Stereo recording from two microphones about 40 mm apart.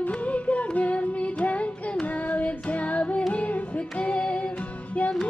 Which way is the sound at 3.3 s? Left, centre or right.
Left.